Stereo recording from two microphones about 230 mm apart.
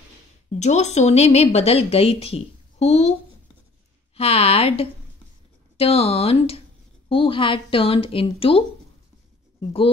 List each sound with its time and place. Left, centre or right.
0.5 s a woman's voice: left